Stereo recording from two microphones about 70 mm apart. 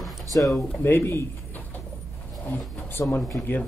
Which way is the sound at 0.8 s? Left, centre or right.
Left.